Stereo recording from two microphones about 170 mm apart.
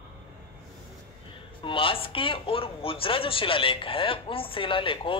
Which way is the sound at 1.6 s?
30° left (ahead or behind).